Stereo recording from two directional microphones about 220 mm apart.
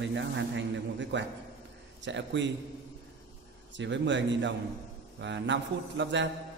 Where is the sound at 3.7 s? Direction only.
55° right (ahead or behind).